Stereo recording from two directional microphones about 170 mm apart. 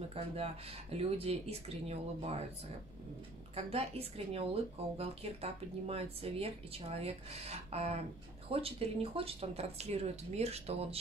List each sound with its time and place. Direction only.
0.9 s speech: 35° right (ahead or behind)
3.5 s speech: 35° right (ahead or behind)